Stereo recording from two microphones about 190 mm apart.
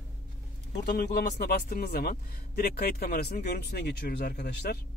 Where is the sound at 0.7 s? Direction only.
55° left (ahead or behind).